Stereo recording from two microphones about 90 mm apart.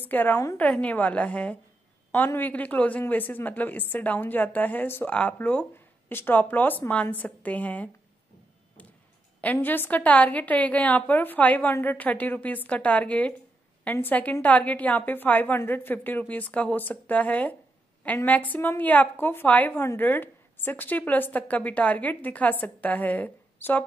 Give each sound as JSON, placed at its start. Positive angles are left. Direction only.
{"t": 0.1, "sound": "a woman's voice", "side_deg": 20}
{"t": 9.4, "sound": "a woman's voice", "side_deg": 20}